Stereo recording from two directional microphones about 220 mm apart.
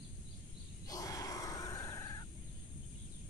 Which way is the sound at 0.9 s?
15° left (ahead or behind).